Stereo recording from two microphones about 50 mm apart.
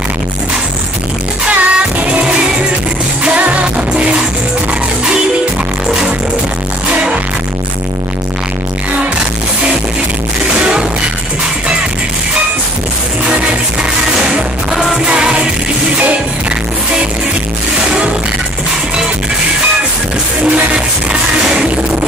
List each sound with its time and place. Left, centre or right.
1.5 s music: right
3.3 s music: right
10.6 s music: centre
14.3 s music: centre
15.0 s music: centre
20.4 s music: right